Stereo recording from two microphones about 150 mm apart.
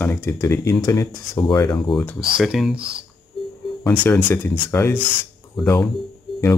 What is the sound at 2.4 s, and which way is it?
Speech, centre (ahead or behind).